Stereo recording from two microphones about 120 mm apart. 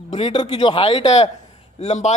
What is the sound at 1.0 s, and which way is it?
A man's voice, 60° left (ahead or behind).